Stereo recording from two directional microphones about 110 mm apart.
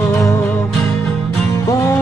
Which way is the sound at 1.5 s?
25° left (ahead or behind).